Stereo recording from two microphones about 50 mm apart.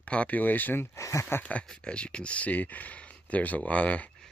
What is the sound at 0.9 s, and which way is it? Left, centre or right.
Speech, left.